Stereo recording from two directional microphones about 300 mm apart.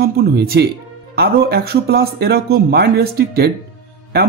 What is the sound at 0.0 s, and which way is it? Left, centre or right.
Speech, right.